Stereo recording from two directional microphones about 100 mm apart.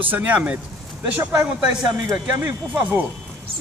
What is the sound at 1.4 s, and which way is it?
Speech, 35° right (ahead or behind).